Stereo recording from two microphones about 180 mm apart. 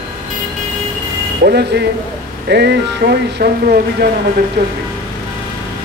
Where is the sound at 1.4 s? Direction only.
65° right (ahead or behind).